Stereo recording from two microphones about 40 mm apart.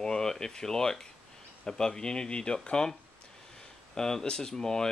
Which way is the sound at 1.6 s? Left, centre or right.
Centre.